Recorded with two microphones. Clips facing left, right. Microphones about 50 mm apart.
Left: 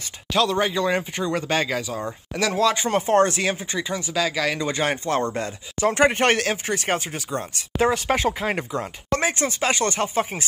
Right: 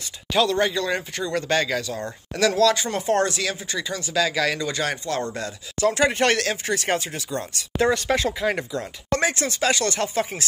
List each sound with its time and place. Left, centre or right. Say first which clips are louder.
0.3 s speech: even; centre
0.6 s speech: left 1 dB; centre
4.0 s speech: right 3 dB; centre
4.6 s speech: left 2 dB; left
9.2 s speech: right 1 dB; left